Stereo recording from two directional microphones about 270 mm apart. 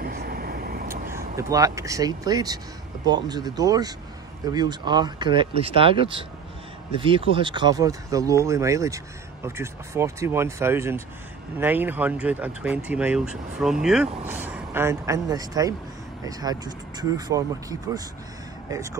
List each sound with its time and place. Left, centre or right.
0.0 s vehicle: right
1.1 s speech: centre